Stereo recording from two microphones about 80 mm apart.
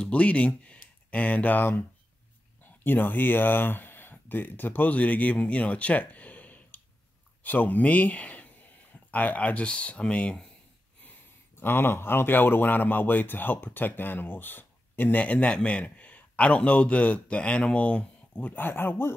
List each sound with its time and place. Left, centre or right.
0.0 s speech: centre
11.0 s a sound: centre
11.6 s speech: left
18.5 s speech: left